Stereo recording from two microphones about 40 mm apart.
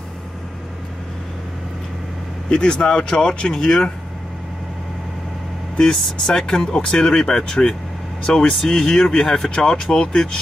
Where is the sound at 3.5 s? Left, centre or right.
Centre.